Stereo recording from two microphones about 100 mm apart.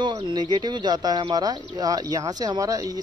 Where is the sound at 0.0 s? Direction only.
45° right (ahead or behind).